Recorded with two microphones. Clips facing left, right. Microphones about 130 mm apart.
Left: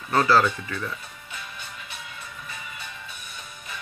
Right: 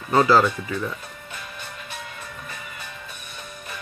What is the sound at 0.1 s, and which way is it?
Speech, 15° right (ahead or behind).